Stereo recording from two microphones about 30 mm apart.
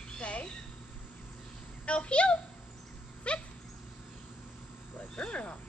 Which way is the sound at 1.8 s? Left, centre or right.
Left.